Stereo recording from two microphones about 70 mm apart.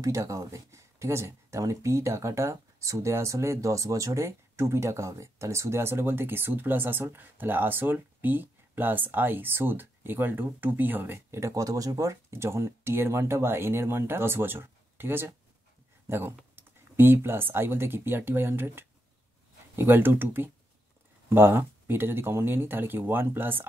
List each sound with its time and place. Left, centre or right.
0.0 s speech: right